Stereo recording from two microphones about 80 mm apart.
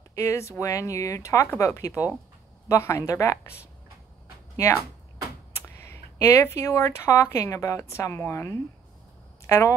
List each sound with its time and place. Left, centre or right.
0.1 s speech: left
5.8 s speech: left